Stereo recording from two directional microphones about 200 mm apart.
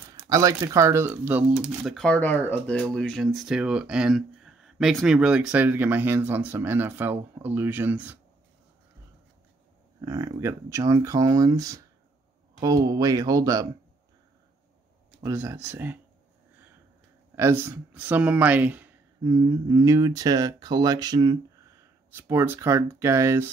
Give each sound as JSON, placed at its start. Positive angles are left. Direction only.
{"t": 0.1, "sound": "speech", "side_deg": -15}
{"t": 10.0, "sound": "speech", "side_deg": -15}
{"t": 15.2, "sound": "speech", "side_deg": -10}
{"t": 17.4, "sound": "speech", "side_deg": -10}